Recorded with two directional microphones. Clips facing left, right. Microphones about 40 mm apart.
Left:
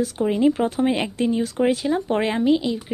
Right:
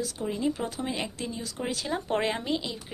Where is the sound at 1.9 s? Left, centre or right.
Centre.